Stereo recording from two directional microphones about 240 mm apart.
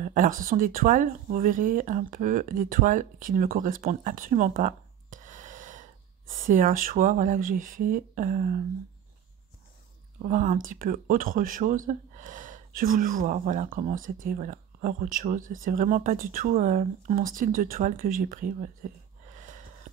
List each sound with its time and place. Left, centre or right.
0.0 s speech: right
10.2 s speech: right